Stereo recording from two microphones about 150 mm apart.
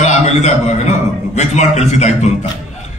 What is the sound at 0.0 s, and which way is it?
A man's voice, 50° left (ahead or behind).